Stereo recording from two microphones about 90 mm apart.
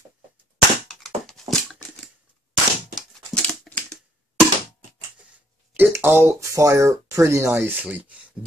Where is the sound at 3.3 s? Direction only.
10° left (ahead or behind).